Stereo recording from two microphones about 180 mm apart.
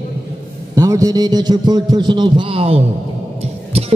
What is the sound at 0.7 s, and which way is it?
A man's voice, 20° right (ahead or behind).